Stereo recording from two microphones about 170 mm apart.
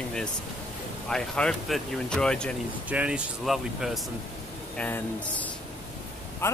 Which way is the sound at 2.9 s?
5° right (ahead or behind).